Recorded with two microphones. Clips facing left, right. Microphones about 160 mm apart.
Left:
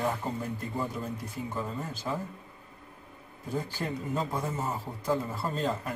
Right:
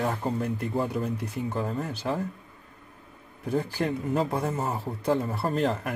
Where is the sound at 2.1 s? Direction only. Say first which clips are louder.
Right 4 dB; 60° right (ahead or behind).